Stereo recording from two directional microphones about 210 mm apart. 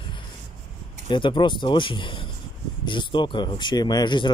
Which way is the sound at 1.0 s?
25° left (ahead or behind).